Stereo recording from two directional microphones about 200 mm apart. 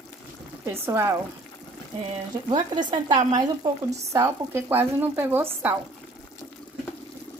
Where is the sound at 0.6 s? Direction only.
15° right (ahead or behind).